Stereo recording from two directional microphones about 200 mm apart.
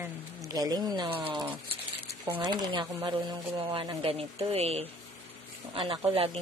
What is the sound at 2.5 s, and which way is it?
Speech, 20° right (ahead or behind).